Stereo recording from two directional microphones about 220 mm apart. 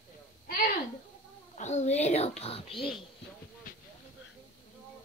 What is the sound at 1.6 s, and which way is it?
A child's voice, 30° left (ahead or behind).